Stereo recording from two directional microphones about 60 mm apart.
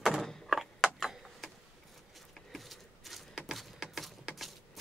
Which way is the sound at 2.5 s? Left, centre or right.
Centre.